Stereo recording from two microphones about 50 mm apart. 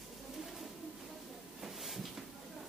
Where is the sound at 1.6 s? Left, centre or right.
Centre.